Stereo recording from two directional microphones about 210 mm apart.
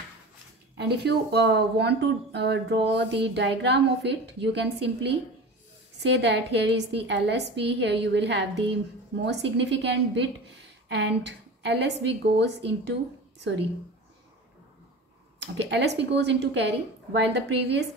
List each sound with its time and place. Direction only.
0.7 s speech: 50° right (ahead or behind)
5.9 s a woman's voice: 55° right (ahead or behind)
15.3 s a woman's voice: 55° right (ahead or behind)